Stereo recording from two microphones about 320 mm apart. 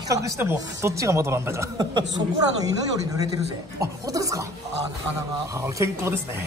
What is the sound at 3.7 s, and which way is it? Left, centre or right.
Speech, centre.